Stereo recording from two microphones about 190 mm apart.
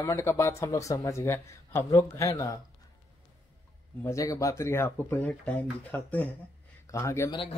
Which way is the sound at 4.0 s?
15° left (ahead or behind).